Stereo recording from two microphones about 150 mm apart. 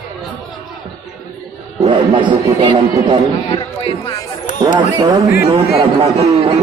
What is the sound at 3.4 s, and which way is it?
Speech, 35° left (ahead or behind).